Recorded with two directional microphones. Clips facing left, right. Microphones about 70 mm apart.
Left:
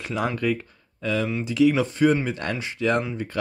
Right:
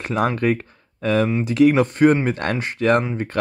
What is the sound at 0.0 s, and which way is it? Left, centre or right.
Speech, right.